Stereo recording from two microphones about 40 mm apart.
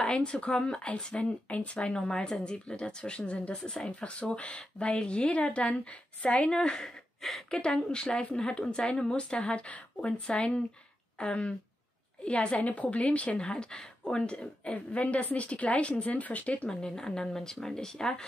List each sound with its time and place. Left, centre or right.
0.0 s speech: left
1.1 s a woman's voice: left; by 3.9 s centre
3.9 s a woman's voice: left
7.2 s speech: centre
7.6 s a woman's voice: left
13.4 s a woman's voice: centre; by 16.6 s left
16.6 s speech: centre